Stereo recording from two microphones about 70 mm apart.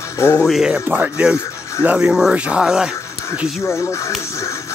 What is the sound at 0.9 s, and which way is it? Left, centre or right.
Speech, right.